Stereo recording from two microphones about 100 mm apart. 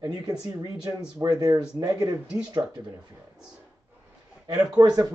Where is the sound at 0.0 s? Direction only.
40° right (ahead or behind).